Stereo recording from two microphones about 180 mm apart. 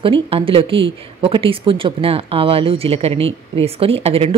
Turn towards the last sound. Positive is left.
turn(degrees=-35)  # may be behind; listen again after turning